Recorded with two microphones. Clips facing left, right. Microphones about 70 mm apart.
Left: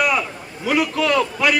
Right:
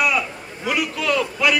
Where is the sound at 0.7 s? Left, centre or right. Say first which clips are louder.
Left 3 dB; left.